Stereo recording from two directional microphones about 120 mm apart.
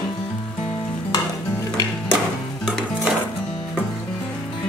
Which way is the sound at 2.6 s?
Centre (ahead or behind).